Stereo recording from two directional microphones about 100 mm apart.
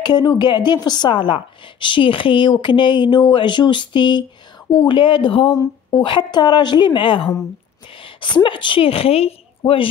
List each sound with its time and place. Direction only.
0.4 s a woman's voice: 50° left (ahead or behind)
4.9 s speech: 60° left (ahead or behind)
5.9 s a woman's voice: 50° left (ahead or behind); by 9.8 s 70° left (ahead or behind)